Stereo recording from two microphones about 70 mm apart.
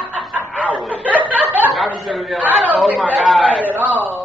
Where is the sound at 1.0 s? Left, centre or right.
Right.